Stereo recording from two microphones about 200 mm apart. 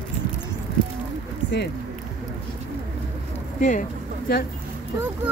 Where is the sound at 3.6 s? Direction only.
40° left (ahead or behind).